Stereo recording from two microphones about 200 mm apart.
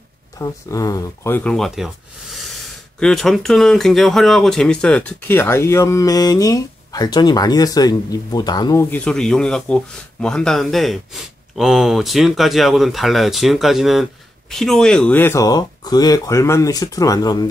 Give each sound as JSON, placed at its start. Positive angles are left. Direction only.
{"t": 0.4, "sound": "speech", "side_deg": 15}
{"t": 8.9, "sound": "speech", "side_deg": 5}